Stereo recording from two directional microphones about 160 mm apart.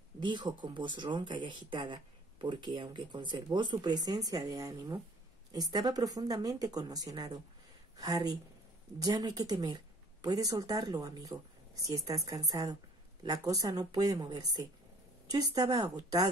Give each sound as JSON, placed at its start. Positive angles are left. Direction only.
{"t": 0.2, "sound": "speech", "side_deg": -30}